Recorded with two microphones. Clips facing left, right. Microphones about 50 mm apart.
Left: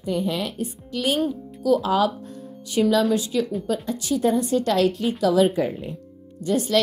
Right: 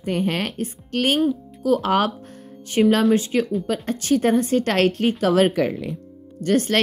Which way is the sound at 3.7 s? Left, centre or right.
Right.